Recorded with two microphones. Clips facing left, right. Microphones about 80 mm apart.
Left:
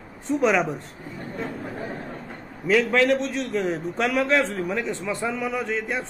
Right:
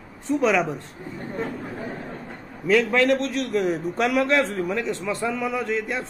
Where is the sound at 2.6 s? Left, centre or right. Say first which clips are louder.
Right 1 dB; centre.